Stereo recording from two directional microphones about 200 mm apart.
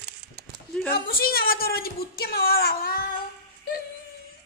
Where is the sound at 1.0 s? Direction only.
50° left (ahead or behind).